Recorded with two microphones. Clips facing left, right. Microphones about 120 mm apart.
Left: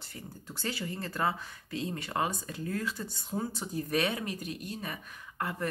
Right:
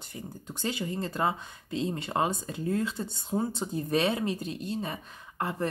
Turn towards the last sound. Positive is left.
turn(degrees=-25)  # may be behind; listen again after turning